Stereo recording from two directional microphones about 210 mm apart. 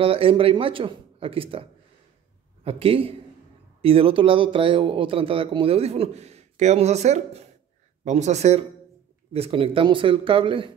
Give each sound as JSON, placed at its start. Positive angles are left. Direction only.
{"t": 0.0, "sound": "speech", "side_deg": -25}